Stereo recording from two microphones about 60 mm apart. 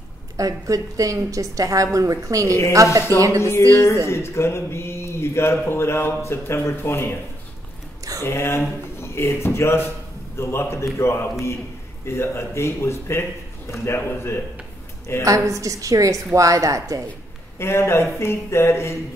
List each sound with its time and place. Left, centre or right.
0.4 s a woman's voice: right
3.7 s speech: left
8.2 s speech: left
15.2 s a woman's voice: right
17.6 s speech: left